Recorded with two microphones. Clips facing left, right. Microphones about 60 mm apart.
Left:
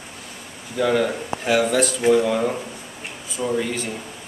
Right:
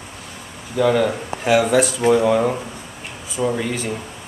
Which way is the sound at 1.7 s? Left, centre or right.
Centre.